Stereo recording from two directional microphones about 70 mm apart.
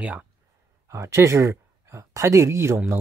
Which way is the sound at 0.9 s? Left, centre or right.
Right.